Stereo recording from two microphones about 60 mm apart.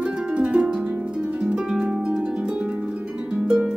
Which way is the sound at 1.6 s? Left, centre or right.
Centre.